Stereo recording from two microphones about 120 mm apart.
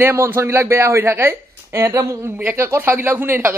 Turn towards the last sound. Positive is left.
turn(degrees=-15)  # may be behind; listen again after turning